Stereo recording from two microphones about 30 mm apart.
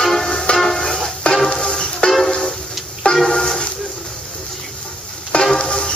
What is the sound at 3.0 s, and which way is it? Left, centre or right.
Music, left.